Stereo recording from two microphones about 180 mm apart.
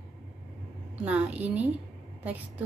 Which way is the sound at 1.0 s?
10° right (ahead or behind).